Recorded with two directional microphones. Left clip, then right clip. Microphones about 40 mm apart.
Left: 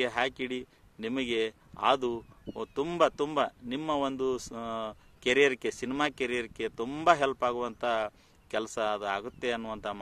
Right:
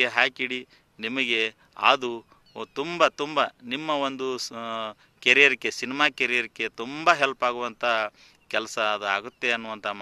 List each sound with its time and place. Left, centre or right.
0.0 s speech: left
4.6 s speech: left